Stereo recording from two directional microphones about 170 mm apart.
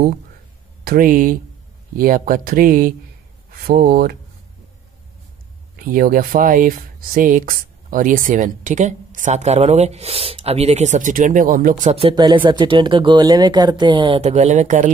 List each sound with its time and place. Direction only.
0.8 s speech: 55° right (ahead or behind)
5.9 s speech: 55° right (ahead or behind)
11.9 s speech: 35° right (ahead or behind)
14.2 s speech: 45° right (ahead or behind)